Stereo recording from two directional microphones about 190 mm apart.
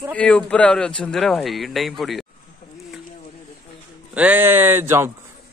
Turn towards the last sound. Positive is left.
turn(degrees=-15)  # may be behind; listen again after turning